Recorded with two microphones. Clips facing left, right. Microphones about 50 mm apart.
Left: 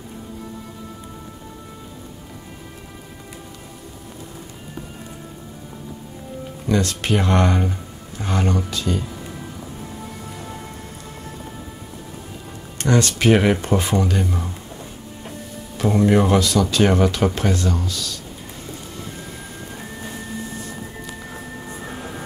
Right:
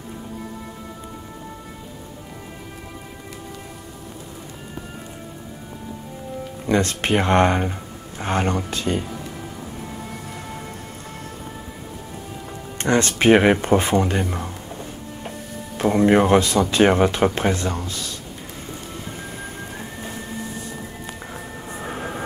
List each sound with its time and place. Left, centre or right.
6.7 s speech: right
12.7 s speech: right
21.3 s a sound: right